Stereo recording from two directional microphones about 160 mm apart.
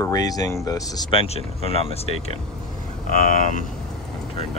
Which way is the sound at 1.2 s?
40° left (ahead or behind).